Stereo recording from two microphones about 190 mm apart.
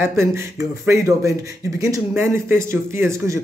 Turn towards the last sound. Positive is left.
turn(degrees=-15)  # may be behind; listen again after turning